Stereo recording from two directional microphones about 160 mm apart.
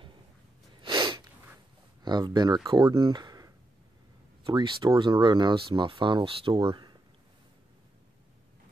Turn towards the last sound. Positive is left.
turn(degrees=-30)  # may be behind; listen again after turning